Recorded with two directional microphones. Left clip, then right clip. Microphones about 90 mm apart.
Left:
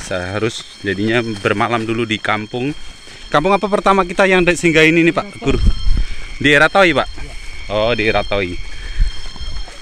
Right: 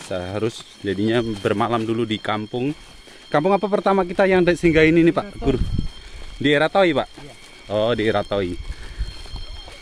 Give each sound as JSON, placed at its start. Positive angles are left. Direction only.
{"t": 0.1, "sound": "speech", "side_deg": -5}
{"t": 0.5, "sound": "speech", "side_deg": -15}
{"t": 3.6, "sound": "speech", "side_deg": -20}
{"t": 4.5, "sound": "speech", "side_deg": -40}
{"t": 4.9, "sound": "a man's voice", "side_deg": -60}
{"t": 6.4, "sound": "speech", "side_deg": -10}
{"t": 7.6, "sound": "speech", "side_deg": -55}